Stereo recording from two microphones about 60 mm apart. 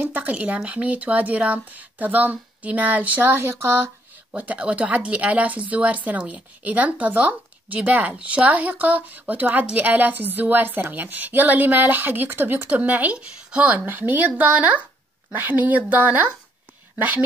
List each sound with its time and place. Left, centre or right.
0.0 s speech: right